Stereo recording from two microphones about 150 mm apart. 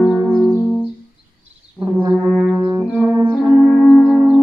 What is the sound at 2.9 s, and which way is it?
Music, 5° right (ahead or behind).